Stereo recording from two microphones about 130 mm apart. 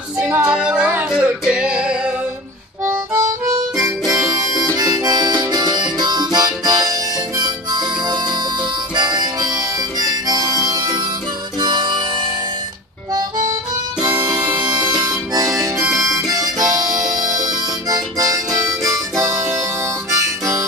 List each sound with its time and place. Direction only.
0.3 s music: 5° right (ahead or behind)
3.2 s harmonica: 25° right (ahead or behind)
14.0 s harmonica: 30° right (ahead or behind)
16.3 s music: 30° right (ahead or behind)
17.1 s harmonica: 30° right (ahead or behind)